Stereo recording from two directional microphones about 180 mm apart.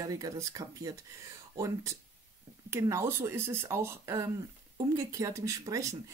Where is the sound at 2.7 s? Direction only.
15° right (ahead or behind).